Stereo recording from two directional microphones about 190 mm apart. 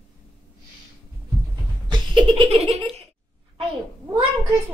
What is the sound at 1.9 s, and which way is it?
Laughter, 25° right (ahead or behind).